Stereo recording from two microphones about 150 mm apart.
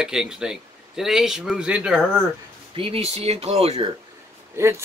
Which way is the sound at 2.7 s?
40° right (ahead or behind).